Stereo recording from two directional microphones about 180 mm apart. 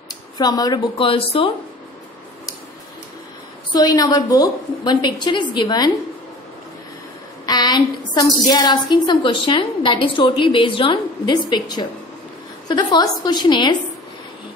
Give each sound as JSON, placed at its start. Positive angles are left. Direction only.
{"t": 0.4, "sound": "a woman's voice", "side_deg": 20}
{"t": 3.7, "sound": "a woman's voice", "side_deg": 20}
{"t": 7.4, "sound": "a woman's voice", "side_deg": 25}